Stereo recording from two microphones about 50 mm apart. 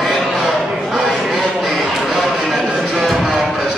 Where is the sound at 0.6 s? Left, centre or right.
Centre.